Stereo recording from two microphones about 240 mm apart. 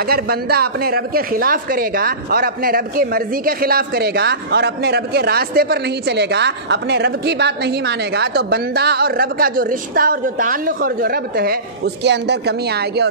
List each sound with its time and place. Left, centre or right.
0.0 s speech: right